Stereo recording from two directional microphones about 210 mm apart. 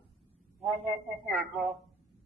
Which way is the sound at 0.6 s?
Centre (ahead or behind).